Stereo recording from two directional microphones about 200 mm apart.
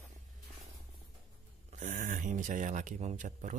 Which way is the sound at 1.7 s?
40° right (ahead or behind).